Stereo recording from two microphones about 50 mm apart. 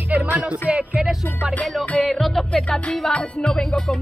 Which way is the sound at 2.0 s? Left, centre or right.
Centre.